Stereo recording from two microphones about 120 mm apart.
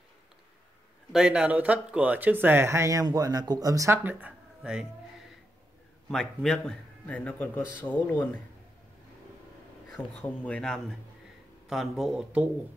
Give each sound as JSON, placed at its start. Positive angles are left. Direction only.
{"t": 1.1, "sound": "speech", "side_deg": -5}
{"t": 4.0, "sound": "speech", "side_deg": -15}
{"t": 6.0, "sound": "a man's voice", "side_deg": 5}
{"t": 9.9, "sound": "a man's voice", "side_deg": 10}